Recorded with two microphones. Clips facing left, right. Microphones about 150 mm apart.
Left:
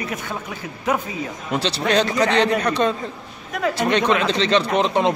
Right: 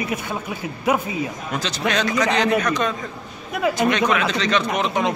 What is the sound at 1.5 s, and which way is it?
Speech, 30° left (ahead or behind).